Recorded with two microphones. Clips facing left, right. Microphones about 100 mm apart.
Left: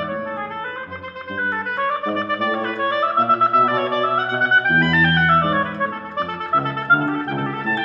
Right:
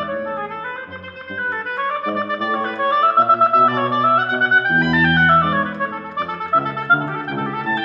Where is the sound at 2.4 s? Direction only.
25° right (ahead or behind).